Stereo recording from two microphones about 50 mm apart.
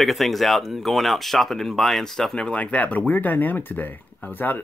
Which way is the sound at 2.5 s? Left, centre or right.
Left.